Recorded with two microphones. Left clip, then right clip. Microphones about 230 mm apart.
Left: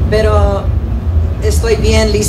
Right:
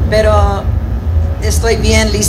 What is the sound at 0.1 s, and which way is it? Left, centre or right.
A woman's voice, right.